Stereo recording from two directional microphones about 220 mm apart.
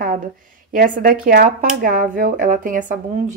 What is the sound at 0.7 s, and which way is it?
Speech, 40° right (ahead or behind).